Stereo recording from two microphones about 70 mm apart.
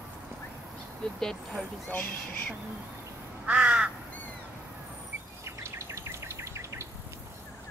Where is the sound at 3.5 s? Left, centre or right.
Centre.